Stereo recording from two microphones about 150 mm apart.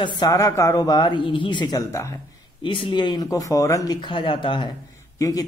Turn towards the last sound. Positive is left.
turn(degrees=20)  # may be behind; listen again after turning